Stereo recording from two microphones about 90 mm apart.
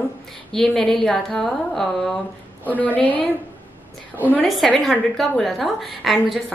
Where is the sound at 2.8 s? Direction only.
15° left (ahead or behind).